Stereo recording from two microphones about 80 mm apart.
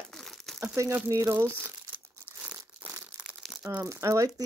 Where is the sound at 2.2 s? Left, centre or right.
Centre.